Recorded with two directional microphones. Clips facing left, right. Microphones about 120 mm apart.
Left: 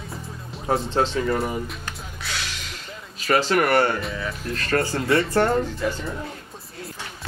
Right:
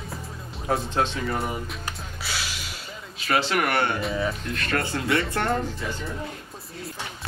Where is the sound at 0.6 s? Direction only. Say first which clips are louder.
Left 3 dB; 30° left (ahead or behind).